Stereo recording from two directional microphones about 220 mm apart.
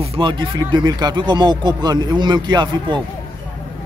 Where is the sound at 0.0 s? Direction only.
25° right (ahead or behind).